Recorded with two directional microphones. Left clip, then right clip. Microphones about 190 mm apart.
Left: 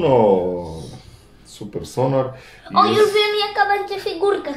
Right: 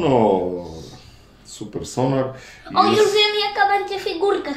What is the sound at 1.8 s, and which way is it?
Speech, 10° right (ahead or behind).